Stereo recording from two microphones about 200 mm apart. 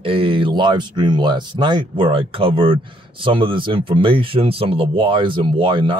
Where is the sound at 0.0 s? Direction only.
25° right (ahead or behind).